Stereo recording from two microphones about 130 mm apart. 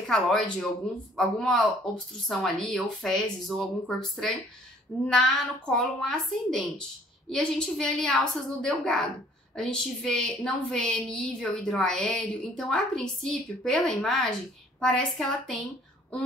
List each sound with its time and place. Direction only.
0.0 s a woman's voice: 5° left (ahead or behind)